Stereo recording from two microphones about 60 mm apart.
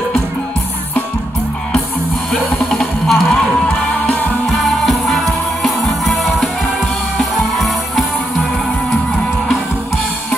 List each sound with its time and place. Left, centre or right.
2.7 s music: centre
3.6 s music: left
4.5 s music: centre
7.5 s music: centre